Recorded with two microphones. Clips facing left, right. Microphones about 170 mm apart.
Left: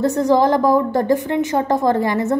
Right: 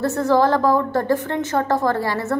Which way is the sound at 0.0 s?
15° left (ahead or behind).